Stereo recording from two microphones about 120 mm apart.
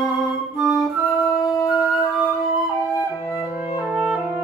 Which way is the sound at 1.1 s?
30° left (ahead or behind).